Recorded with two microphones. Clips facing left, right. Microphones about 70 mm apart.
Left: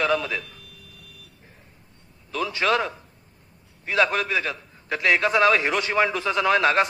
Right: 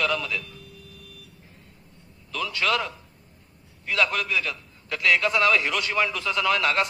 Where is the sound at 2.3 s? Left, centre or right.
Left.